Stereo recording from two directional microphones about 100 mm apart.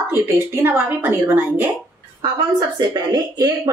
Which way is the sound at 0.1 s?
20° right (ahead or behind).